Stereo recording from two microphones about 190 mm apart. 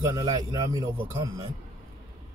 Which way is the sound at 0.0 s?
20° right (ahead or behind).